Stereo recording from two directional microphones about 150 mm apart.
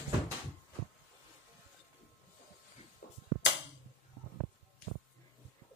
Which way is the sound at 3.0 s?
70° left (ahead or behind).